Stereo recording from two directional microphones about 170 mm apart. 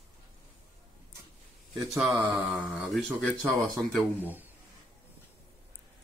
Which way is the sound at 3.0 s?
10° left (ahead or behind).